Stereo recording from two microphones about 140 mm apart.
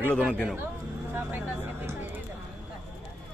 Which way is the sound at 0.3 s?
5° left (ahead or behind).